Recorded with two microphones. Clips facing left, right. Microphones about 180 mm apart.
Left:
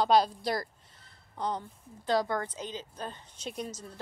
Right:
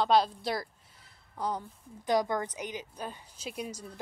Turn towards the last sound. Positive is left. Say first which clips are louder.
# even
turn(degrees=-10)  # may be behind; listen again after turning